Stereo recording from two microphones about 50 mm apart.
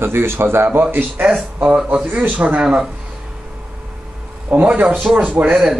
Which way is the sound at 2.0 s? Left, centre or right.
Right.